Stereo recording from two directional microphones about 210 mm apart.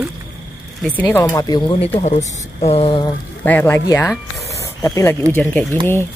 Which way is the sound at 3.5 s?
10° left (ahead or behind).